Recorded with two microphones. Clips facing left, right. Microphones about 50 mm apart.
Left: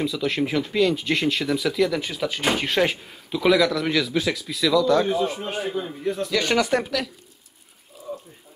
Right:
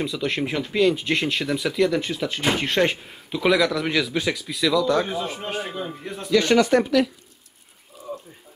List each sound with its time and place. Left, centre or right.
0.0 s speech: centre
5.4 s speech: centre
6.4 s speech: centre